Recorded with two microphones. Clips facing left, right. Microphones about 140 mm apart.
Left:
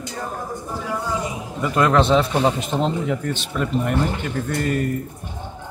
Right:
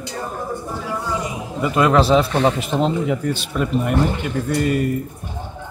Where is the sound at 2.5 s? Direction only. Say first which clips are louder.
Right 3 dB; 5° right (ahead or behind).